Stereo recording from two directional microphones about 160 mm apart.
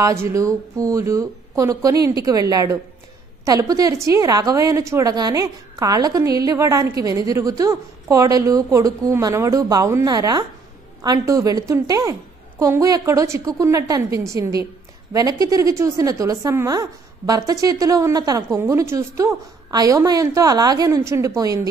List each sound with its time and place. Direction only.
0.0 s a woman's voice: 20° right (ahead or behind)